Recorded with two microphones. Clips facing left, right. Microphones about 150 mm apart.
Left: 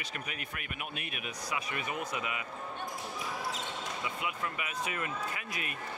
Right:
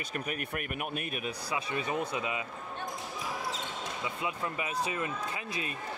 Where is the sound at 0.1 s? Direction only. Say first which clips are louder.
Right 7 dB; 45° right (ahead or behind); by 2.4 s 25° right (ahead or behind).